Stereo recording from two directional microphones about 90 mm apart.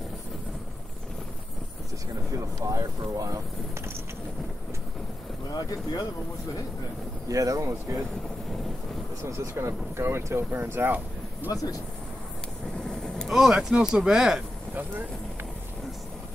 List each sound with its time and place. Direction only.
2.3 s speech: 40° right (ahead or behind)
5.5 s speech: 45° left (ahead or behind)
7.2 s speech: 40° right (ahead or behind)
9.2 s speech: 30° right (ahead or behind)
11.5 s speech: 40° left (ahead or behind)
12.7 s vehicle: 5° left (ahead or behind)
13.4 s speech: 5° right (ahead or behind)